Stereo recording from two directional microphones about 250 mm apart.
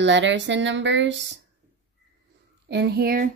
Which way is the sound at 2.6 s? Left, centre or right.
Right.